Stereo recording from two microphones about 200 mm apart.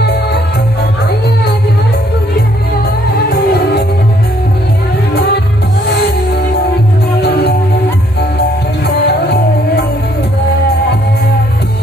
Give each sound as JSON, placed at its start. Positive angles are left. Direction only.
{"t": 7.2, "sound": "music", "side_deg": 55}
{"t": 8.8, "sound": "music", "side_deg": 55}